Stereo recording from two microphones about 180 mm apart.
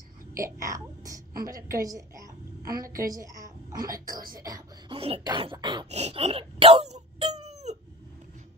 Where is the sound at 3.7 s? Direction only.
55° right (ahead or behind).